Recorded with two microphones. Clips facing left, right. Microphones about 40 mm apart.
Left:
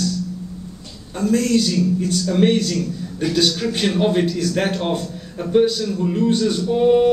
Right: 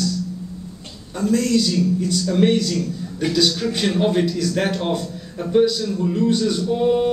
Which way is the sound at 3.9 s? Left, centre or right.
Centre.